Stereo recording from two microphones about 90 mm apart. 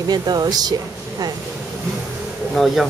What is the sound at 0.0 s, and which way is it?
Speech, 50° right (ahead or behind).